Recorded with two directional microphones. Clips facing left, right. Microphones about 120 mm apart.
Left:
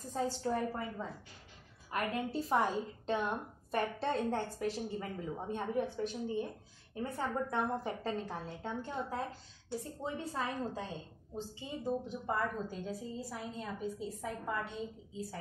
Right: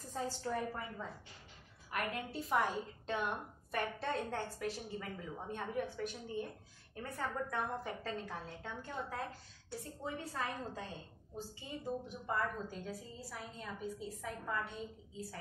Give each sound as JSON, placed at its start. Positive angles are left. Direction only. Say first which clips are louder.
{"t": 0.1, "sound": "a woman's voice", "louder": "left 4 dB", "side_deg": 30}